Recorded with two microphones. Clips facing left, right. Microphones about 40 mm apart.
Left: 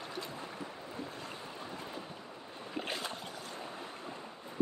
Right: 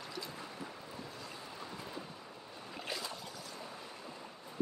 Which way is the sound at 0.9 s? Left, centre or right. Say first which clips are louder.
Left 4 dB; left.